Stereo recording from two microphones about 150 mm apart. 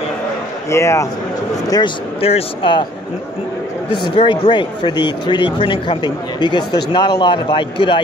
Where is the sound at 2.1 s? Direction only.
40° left (ahead or behind).